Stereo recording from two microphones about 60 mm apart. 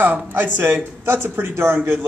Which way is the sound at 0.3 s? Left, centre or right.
Right.